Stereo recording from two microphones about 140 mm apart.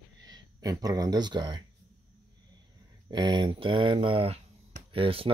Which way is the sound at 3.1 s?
30° right (ahead or behind).